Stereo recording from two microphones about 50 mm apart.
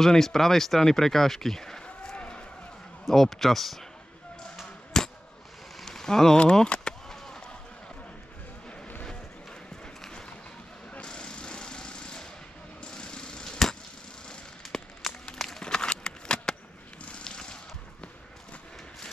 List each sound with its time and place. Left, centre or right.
0.0 s speech: centre
2.1 s run: centre
3.1 s a man's voice: centre
4.6 s a sound: centre
6.5 s vehicle: centre
11.1 s lawn mower: centre
12.8 s a sound: centre